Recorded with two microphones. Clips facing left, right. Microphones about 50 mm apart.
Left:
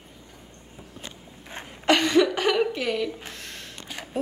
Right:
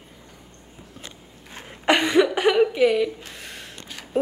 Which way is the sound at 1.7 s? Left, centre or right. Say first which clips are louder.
Right 1 dB; centre.